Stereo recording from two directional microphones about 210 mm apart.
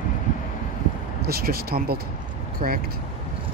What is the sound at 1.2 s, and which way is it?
Speech, 45° right (ahead or behind).